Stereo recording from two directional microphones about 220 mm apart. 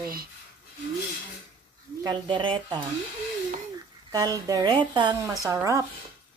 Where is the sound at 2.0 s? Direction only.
20° right (ahead or behind).